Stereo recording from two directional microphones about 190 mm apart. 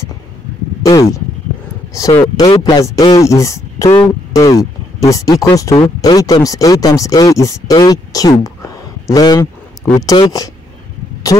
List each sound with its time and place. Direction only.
0.8 s a man's voice: 20° left (ahead or behind)